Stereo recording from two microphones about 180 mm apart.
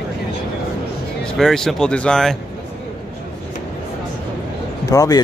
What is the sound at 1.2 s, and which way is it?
Speech, centre (ahead or behind).